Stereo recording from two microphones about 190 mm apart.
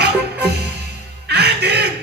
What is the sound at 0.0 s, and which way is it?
Music, 60° right (ahead or behind).